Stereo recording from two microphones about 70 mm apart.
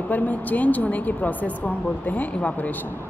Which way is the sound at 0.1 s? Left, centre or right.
Left.